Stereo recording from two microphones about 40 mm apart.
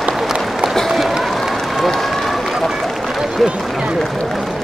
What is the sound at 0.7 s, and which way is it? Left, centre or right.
Run, centre.